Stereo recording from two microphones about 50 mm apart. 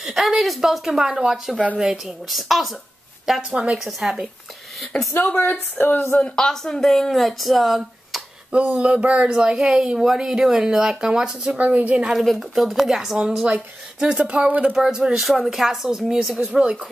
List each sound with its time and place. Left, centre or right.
0.0 s a woman's voice: centre
1.3 s a woman's voice: centre
4.9 s speech: centre
5.4 s speech: left
6.1 s speech: centre
8.5 s speech: right
11.5 s speech: right
12.1 s speech: centre; by 14.7 s right
14.7 s speech: centre